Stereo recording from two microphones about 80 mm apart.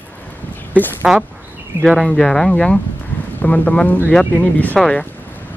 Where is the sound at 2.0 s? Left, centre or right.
Centre.